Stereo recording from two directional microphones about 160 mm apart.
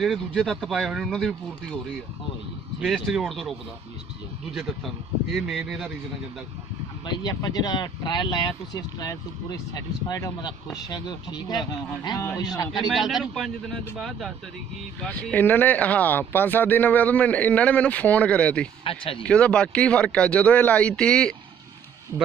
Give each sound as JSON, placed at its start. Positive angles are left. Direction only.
{"t": 0.0, "sound": "speech", "side_deg": 0}
{"t": 2.8, "sound": "speech", "side_deg": 0}
{"t": 4.6, "sound": "speech", "side_deg": 0}
{"t": 7.1, "sound": "speech", "side_deg": 25}
{"t": 12.7, "sound": "speech", "side_deg": 0}
{"t": 18.9, "sound": "speech", "side_deg": 35}
{"t": 19.2, "sound": "speech", "side_deg": 5}